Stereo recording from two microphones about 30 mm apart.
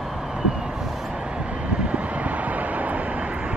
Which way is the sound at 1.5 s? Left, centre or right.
Right.